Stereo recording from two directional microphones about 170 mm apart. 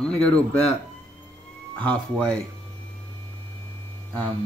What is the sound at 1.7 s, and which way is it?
Speech, 5° left (ahead or behind).